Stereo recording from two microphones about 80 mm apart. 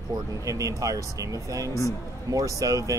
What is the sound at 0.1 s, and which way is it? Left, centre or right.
Speech, right.